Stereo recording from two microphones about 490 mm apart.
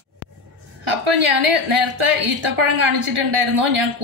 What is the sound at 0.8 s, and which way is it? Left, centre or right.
A woman's voice, right.